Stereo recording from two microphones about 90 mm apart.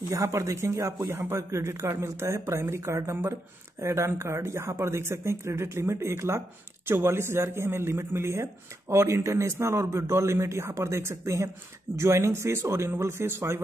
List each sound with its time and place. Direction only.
0.1 s speech: 35° right (ahead or behind)